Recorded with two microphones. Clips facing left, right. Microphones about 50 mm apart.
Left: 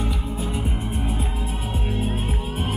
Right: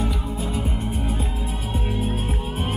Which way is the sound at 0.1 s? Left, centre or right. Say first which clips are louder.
Right 1 dB; centre.